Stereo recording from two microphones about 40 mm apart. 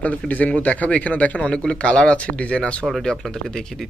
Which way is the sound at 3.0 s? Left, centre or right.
Centre.